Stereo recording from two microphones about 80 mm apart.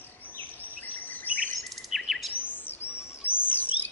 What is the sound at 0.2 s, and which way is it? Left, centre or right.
Bird vocalization, left.